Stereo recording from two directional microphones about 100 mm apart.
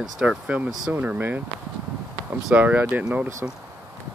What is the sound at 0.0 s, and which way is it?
Speech, 5° right (ahead or behind).